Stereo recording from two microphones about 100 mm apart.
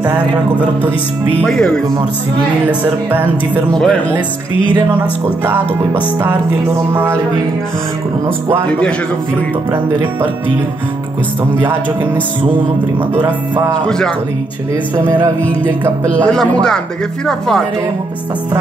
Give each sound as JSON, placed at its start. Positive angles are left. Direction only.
{"t": 0.1, "sound": "music", "side_deg": -20}
{"t": 1.4, "sound": "a man's voice", "side_deg": 5}
{"t": 2.7, "sound": "music", "side_deg": -15}
{"t": 3.7, "sound": "a man's voice", "side_deg": 5}
{"t": 8.6, "sound": "a man's voice", "side_deg": 10}
{"t": 9.7, "sound": "music", "side_deg": -20}
{"t": 11.6, "sound": "music", "side_deg": -20}
{"t": 13.2, "sound": "music", "side_deg": -45}
{"t": 13.8, "sound": "a man's voice", "side_deg": 5}
{"t": 17.3, "sound": "speech", "side_deg": 5}